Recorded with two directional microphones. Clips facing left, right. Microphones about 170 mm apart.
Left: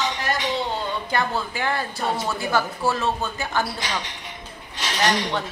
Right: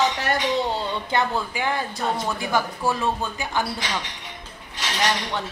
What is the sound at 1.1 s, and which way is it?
Speech, 15° right (ahead or behind).